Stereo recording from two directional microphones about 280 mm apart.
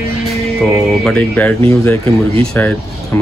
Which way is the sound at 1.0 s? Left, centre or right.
Centre.